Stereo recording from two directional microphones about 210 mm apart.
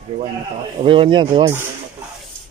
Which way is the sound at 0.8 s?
25° right (ahead or behind).